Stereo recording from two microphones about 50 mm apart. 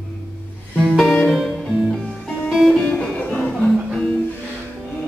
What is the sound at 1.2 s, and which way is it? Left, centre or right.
Music, centre.